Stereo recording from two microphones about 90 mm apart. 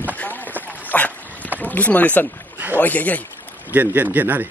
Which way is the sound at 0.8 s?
15° left (ahead or behind).